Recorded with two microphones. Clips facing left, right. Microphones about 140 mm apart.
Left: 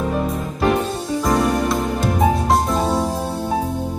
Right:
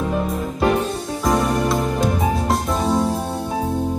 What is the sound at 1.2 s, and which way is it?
Music, centre (ahead or behind).